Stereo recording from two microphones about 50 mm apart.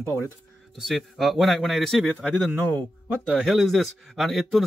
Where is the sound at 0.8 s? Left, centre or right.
Centre.